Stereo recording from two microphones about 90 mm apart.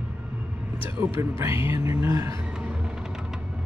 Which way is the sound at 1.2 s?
30° right (ahead or behind).